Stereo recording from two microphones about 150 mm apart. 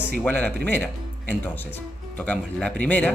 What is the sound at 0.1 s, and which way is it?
Speech, 10° left (ahead or behind).